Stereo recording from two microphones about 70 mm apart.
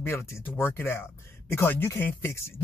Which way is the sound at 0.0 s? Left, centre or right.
Left.